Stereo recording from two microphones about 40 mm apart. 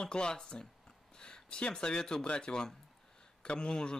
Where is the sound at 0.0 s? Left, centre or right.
Left.